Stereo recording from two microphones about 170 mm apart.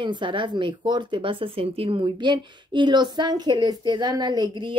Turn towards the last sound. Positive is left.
turn(degrees=-25)  # may be behind; listen again after turning